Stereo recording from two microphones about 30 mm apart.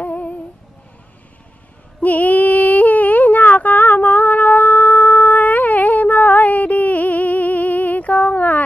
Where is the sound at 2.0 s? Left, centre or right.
Left.